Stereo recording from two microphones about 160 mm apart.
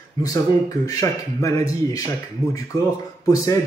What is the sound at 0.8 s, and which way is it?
Speech, 20° left (ahead or behind).